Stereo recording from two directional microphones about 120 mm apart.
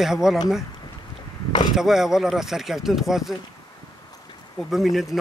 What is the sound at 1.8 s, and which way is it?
Speech, 5° right (ahead or behind).